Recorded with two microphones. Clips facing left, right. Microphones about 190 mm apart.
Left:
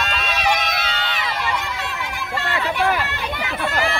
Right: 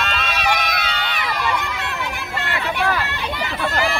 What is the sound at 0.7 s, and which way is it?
Crowd, 25° left (ahead or behind).